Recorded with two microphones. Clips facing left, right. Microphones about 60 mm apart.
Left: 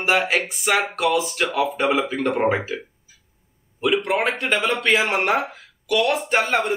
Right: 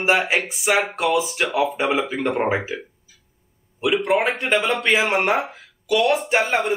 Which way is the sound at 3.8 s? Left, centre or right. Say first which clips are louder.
Right 1 dB; centre.